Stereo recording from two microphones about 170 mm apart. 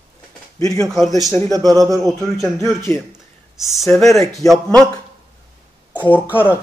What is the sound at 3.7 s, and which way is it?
Speech, centre (ahead or behind).